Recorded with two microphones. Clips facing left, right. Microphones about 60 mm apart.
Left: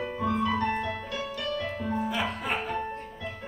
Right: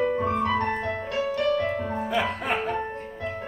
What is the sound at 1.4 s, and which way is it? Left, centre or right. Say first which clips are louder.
Music: right 8 dB; right.